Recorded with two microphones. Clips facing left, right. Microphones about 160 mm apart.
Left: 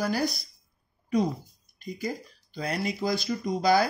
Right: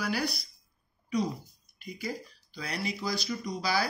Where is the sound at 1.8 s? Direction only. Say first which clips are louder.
Left 4 dB; 50° left (ahead or behind).